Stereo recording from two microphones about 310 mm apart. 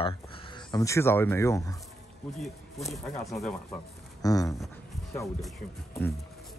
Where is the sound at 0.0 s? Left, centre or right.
Centre.